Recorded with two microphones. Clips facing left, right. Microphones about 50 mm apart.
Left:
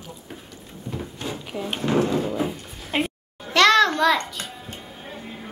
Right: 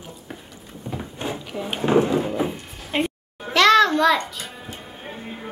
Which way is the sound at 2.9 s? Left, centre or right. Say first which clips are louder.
Right 1 dB; centre.